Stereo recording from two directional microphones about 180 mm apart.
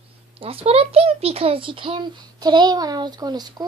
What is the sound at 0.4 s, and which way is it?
A child's voice, 30° right (ahead or behind).